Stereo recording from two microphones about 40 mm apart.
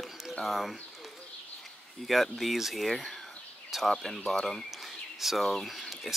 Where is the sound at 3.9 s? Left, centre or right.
Centre.